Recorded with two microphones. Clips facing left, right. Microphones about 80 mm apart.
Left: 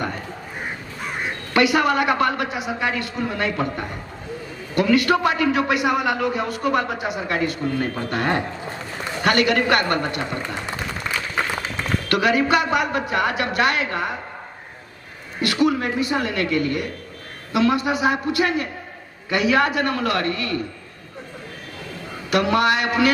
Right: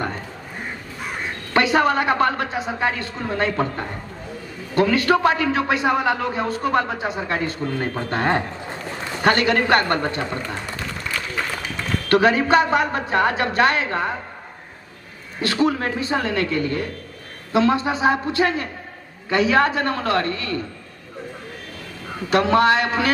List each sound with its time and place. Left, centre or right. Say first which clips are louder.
1.5 s a man's voice: even; right
12.1 s a man's voice: right 3 dB; right
15.4 s a sound: even; right
15.8 s a man's voice: even; right
22.3 s a man's voice: right 2 dB; right